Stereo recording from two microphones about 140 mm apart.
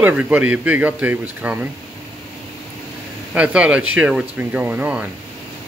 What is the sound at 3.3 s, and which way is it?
Speech, 10° right (ahead or behind).